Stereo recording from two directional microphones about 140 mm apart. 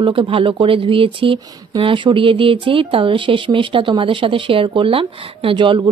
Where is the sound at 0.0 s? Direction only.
35° right (ahead or behind).